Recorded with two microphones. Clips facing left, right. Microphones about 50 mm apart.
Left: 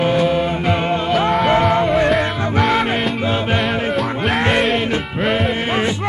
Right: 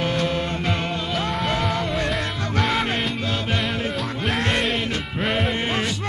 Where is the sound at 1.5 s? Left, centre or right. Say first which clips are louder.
Left 9 dB; left.